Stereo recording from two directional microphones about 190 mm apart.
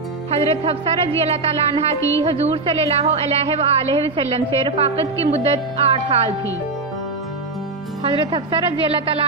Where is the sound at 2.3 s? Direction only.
30° right (ahead or behind).